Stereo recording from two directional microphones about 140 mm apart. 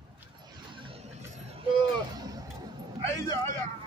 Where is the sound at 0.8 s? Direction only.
40° right (ahead or behind).